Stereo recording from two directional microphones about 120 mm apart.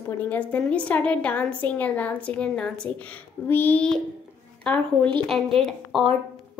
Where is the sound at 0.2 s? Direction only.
15° left (ahead or behind).